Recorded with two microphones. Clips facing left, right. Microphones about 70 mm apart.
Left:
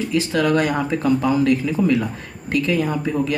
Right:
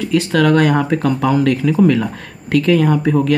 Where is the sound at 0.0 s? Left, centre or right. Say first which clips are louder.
Right 5 dB; right.